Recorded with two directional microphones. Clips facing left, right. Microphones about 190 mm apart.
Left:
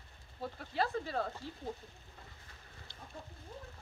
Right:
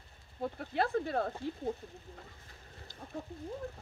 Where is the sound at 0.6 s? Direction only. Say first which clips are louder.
Right 3 dB; 55° right (ahead or behind).